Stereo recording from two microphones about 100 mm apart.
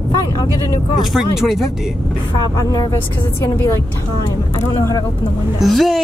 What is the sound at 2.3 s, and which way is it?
Speech, 40° left (ahead or behind).